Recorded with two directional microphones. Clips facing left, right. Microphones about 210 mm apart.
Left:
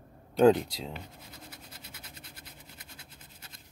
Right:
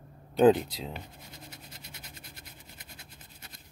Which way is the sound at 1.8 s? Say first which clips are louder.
Even; 30° left (ahead or behind).